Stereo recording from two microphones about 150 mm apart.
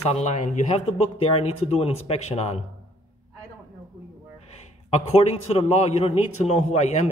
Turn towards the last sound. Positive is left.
turn(degrees=45)  # may be behind; listen again after turning